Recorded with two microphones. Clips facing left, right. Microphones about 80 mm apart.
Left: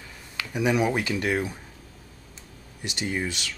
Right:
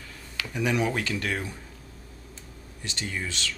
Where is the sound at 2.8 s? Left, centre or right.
Centre.